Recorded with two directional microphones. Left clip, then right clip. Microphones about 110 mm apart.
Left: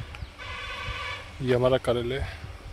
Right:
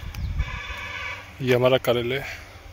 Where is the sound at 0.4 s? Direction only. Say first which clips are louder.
Right 2 dB; 30° left (ahead or behind).